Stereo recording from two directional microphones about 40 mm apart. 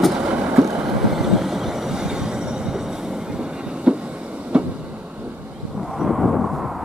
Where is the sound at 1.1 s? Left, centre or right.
Centre.